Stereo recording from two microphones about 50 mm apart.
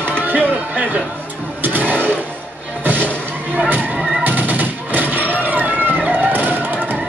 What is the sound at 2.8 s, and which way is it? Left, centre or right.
Music, right.